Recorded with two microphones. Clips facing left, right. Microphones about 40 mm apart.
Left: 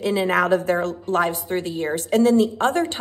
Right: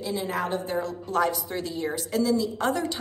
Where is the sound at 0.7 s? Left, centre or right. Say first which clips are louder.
Left 5 dB; left.